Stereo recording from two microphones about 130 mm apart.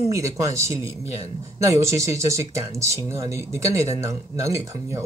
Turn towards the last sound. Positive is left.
turn(degrees=-25)  # may be behind; listen again after turning